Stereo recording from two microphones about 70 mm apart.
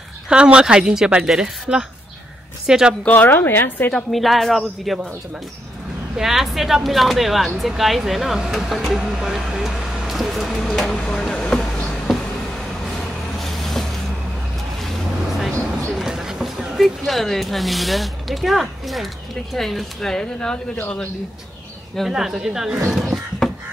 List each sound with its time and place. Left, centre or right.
0.3 s a woman's voice: centre
3.1 s a woman's voice: left
3.9 s speech: centre
6.1 s speech: centre
12.9 s vehicle: centre
16.7 s speech: centre
20.7 s a woman's voice: left
21.9 s a woman's voice: centre
22.8 s a sound: centre